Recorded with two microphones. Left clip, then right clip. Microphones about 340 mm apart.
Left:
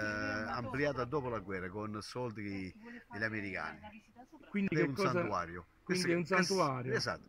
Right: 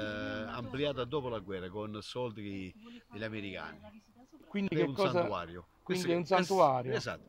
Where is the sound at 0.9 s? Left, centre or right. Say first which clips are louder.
Right 1 dB; centre.